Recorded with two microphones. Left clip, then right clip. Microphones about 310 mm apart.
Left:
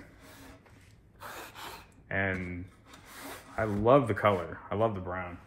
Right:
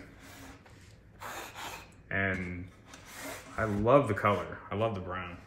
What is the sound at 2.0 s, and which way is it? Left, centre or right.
Speech, centre.